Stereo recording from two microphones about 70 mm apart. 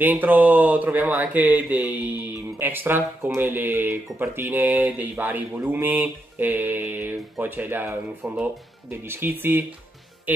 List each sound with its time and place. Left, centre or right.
0.0 s speech: right